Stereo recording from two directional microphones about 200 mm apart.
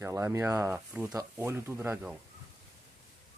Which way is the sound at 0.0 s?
15° right (ahead or behind).